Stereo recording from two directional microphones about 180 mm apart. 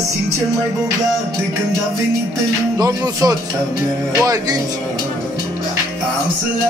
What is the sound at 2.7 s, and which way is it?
Speech, 20° right (ahead or behind).